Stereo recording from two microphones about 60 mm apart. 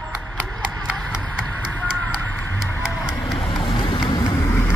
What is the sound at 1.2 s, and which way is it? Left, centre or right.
Music, left.